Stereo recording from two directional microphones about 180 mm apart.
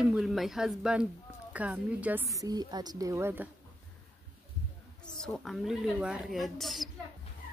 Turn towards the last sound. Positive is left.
turn(degrees=0)  # may be behind; listen again after turning